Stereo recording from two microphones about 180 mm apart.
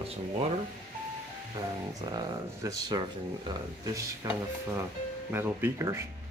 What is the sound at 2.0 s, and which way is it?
Speech, 20° right (ahead or behind).